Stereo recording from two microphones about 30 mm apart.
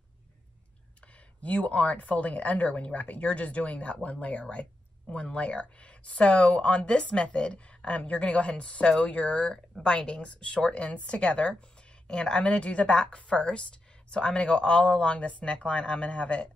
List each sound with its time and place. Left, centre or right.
1.0 s speech: left
9.8 s speech: left
12.1 s speech: left